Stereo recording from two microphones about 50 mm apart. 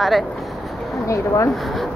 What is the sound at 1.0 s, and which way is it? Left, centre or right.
Speech, left.